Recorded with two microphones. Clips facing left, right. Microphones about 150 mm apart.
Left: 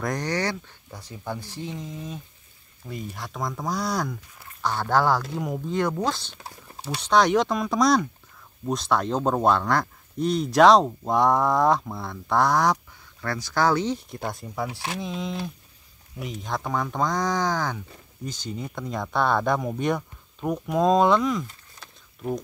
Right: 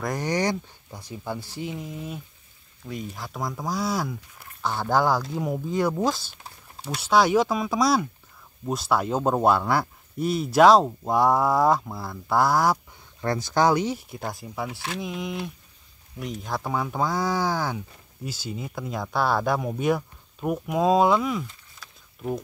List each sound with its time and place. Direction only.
0.0 s speech: 5° right (ahead or behind)
0.3 s speech: 15° right (ahead or behind)
2.9 s speech: centre (ahead or behind)
13.2 s speech: 20° right (ahead or behind); by 14.7 s centre (ahead or behind)
14.7 s speech: 20° left (ahead or behind)
16.2 s speech: centre (ahead or behind)